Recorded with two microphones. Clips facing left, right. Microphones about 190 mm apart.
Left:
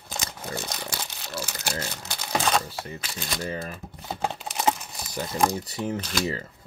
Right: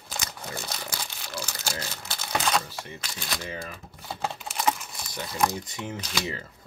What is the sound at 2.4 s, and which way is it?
Camera, 30° left (ahead or behind).